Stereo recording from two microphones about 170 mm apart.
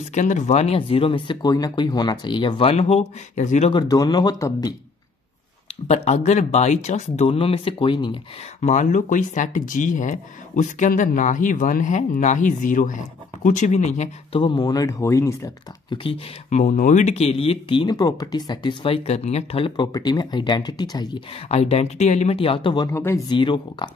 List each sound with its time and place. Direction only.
0.1 s speech: 45° left (ahead or behind)
3.7 s speech: 20° left (ahead or behind)
5.9 s speech: 40° left (ahead or behind)
8.5 s speech: 45° left (ahead or behind)
14.4 s speech: 25° left (ahead or behind)
16.0 s speech: 40° left (ahead or behind); by 21.2 s 25° left (ahead or behind)
21.5 s speech: 40° left (ahead or behind)
22.8 s speech: 15° left (ahead or behind)